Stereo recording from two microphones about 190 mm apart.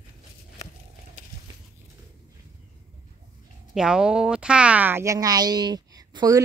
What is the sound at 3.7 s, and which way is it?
Speech, 5° right (ahead or behind).